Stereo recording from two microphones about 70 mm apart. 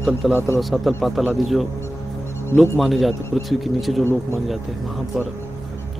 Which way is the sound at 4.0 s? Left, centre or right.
Left.